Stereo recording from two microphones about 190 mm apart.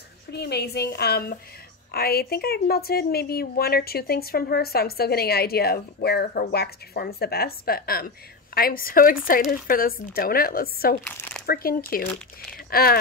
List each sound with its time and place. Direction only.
0.3 s a woman's voice: 60° left (ahead or behind)
11.1 s a sound: 10° left (ahead or behind)
11.4 s speech: 50° left (ahead or behind)